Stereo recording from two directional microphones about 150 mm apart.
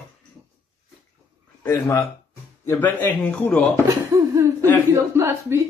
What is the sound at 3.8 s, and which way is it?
A man's voice, 20° right (ahead or behind).